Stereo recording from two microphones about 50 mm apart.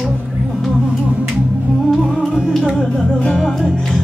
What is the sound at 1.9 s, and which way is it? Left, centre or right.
Music, centre.